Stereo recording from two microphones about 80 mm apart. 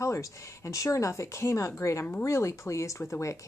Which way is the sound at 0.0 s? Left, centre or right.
Left.